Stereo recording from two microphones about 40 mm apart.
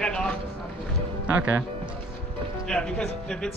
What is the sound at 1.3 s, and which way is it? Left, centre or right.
Speech, right.